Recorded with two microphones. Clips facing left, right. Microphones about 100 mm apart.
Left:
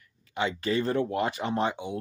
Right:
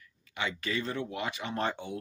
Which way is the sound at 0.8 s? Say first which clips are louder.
Left 8 dB; 45° left (ahead or behind).